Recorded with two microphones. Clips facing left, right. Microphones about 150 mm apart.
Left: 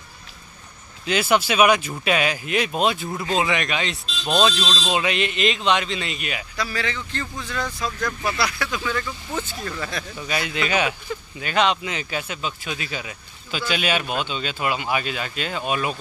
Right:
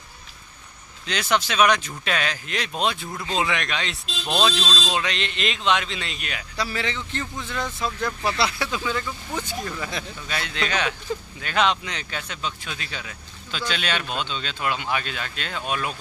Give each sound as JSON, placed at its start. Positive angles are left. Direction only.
{"t": 1.0, "sound": "a man's voice", "side_deg": 10}
{"t": 6.5, "sound": "speech", "side_deg": -25}
{"t": 10.2, "sound": "speech", "side_deg": 10}